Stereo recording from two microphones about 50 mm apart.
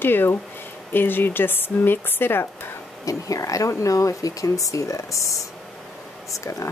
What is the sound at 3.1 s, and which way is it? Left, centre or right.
Speech, left.